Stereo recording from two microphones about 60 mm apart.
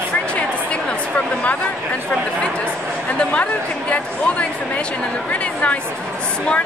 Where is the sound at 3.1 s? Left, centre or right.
Left.